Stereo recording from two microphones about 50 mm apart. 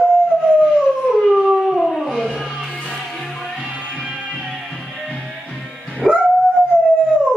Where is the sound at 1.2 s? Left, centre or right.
Centre.